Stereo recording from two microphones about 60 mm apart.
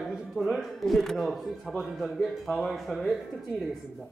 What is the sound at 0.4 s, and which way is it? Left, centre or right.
A man's voice, centre.